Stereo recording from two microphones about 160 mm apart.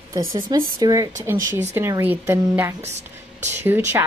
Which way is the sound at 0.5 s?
25° right (ahead or behind).